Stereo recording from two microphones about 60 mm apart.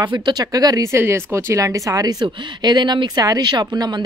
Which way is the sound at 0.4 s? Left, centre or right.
Right.